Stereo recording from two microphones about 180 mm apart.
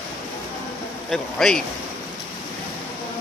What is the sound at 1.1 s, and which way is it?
Speech, 5° left (ahead or behind).